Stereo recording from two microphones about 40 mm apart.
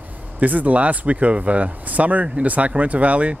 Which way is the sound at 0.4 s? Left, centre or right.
Right.